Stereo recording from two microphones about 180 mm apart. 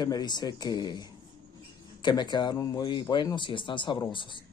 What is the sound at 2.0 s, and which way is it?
Speech, 25° left (ahead or behind).